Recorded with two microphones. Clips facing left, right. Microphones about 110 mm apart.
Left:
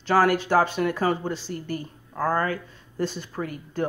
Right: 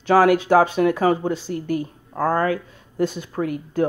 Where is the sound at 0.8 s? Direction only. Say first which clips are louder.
Right 6 dB; 10° right (ahead or behind).